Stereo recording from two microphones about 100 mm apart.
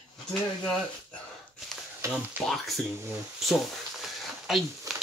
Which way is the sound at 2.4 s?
20° right (ahead or behind).